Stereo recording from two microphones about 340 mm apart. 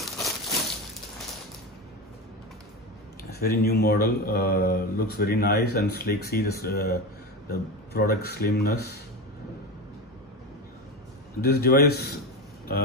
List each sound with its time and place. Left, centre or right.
0.0 s a sound: centre
3.3 s speech: left
11.4 s speech: left